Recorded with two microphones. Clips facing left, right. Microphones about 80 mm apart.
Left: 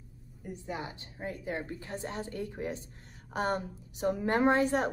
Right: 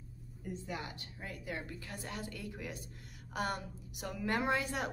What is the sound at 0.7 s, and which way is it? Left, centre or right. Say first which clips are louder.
A woman's voice: left 4 dB; left.